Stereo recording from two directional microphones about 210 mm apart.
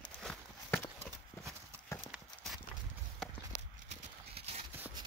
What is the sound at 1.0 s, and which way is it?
Clip-clop, 15° right (ahead or behind).